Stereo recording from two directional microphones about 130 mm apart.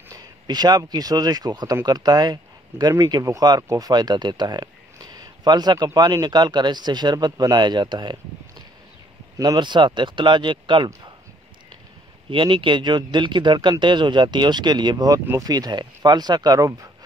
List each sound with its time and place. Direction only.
0.1 s speech: 30° right (ahead or behind)
9.4 s speech: 35° right (ahead or behind)
12.3 s speech: 40° right (ahead or behind)